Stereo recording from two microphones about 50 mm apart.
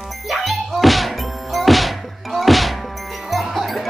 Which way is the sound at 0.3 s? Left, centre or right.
Centre.